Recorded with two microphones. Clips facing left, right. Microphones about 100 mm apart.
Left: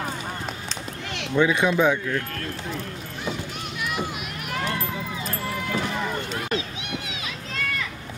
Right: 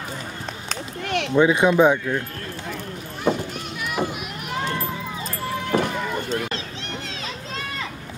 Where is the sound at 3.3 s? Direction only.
55° right (ahead or behind).